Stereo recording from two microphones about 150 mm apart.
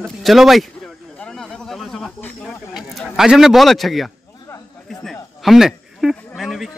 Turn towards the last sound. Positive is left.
turn(degrees=0)  # may be behind; listen again after turning